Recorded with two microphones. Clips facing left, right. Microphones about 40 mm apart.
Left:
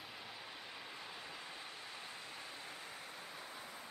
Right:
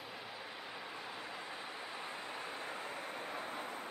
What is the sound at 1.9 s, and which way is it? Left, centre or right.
Vehicle, right.